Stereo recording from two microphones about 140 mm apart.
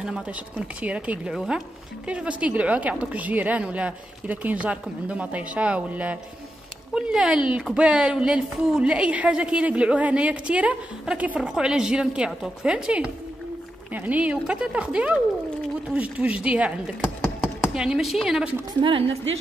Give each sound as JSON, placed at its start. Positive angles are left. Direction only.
{"t": 0.0, "sound": "a woman's voice", "side_deg": -5}
{"t": 17.0, "sound": "chopping", "side_deg": 5}
{"t": 17.7, "sound": "speech", "side_deg": -5}
{"t": 18.8, "sound": "a woman's voice", "side_deg": -40}